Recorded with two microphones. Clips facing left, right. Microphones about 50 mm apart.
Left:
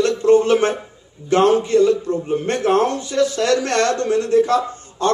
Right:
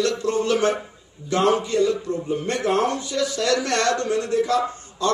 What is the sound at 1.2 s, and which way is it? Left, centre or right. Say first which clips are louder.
A man's voice: left 5 dB; left.